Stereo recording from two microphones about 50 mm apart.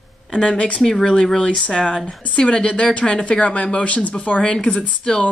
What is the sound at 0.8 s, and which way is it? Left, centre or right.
Speech, centre.